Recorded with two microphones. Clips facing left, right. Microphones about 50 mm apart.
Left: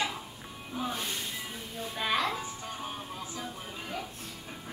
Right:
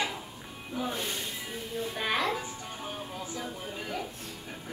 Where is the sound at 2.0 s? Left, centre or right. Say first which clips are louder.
Left 1 dB; centre.